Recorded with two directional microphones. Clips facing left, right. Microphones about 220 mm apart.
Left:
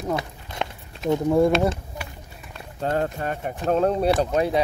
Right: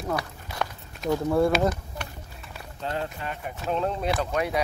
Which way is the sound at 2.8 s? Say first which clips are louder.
Left 7 dB; 45° left (ahead or behind).